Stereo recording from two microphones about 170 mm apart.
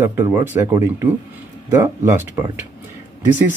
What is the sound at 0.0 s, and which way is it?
Speech, 15° right (ahead or behind).